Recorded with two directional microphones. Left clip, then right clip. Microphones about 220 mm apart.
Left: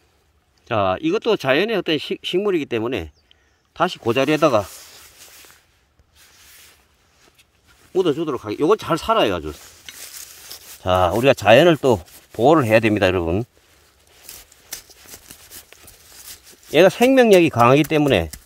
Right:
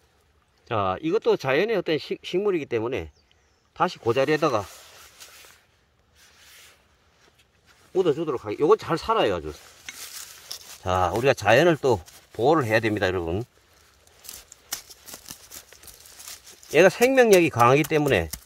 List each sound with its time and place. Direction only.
0.7 s speech: 40° left (ahead or behind)
7.9 s speech: 40° left (ahead or behind)
10.8 s speech: 35° left (ahead or behind)
16.7 s speech: 30° left (ahead or behind)